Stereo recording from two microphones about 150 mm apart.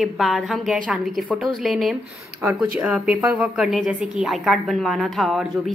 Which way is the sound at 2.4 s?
15° right (ahead or behind).